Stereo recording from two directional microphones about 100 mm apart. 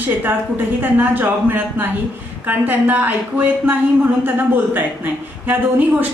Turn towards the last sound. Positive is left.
turn(degrees=-20)  # may be behind; listen again after turning